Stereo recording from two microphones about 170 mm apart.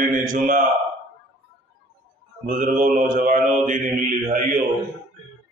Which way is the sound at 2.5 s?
55° right (ahead or behind).